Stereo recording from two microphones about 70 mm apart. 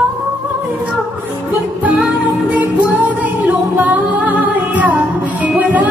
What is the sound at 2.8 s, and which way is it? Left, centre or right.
Music, right.